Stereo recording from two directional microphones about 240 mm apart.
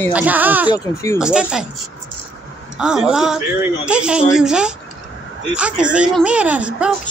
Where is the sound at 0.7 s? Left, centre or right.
Centre.